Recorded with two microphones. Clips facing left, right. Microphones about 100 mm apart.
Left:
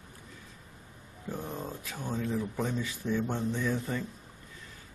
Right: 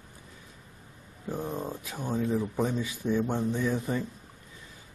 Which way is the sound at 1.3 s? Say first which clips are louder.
Right 4 dB; 15° right (ahead or behind).